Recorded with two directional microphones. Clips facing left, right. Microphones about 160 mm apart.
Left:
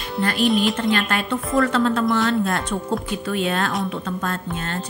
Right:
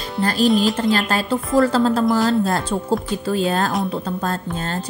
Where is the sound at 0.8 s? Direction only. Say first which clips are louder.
Right 2 dB; 35° right (ahead or behind).